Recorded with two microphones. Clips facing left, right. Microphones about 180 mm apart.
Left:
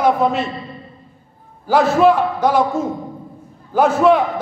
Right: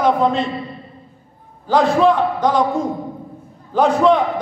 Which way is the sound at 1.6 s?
5° left (ahead or behind).